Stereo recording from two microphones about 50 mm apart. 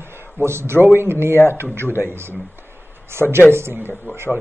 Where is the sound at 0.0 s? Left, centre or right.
Right.